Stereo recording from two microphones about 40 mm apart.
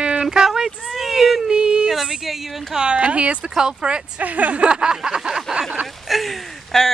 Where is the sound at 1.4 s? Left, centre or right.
Right.